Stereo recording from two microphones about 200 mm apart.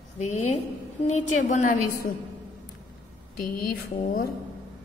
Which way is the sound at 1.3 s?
40° left (ahead or behind).